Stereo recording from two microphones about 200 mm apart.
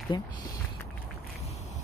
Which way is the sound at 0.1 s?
20° left (ahead or behind).